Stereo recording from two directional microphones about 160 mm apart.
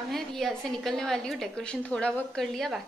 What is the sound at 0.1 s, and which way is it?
A woman's voice, centre (ahead or behind).